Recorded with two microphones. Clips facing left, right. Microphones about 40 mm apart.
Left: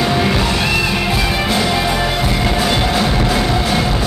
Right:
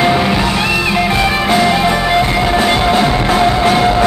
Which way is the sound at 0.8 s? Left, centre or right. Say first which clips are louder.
Right 4 dB; right.